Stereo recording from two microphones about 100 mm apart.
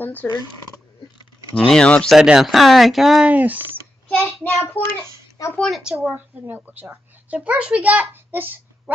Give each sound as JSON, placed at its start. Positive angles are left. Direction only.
{"t": 0.0, "sound": "speech", "side_deg": 15}
{"t": 1.5, "sound": "speech", "side_deg": 5}
{"t": 2.1, "sound": "speech", "side_deg": -5}
{"t": 3.3, "sound": "speech", "side_deg": -15}
{"t": 4.2, "sound": "child singing", "side_deg": 20}
{"t": 5.4, "sound": "a woman's voice", "side_deg": 40}
{"t": 5.8, "sound": "speech", "side_deg": -10}
{"t": 6.4, "sound": "a child's voice", "side_deg": -20}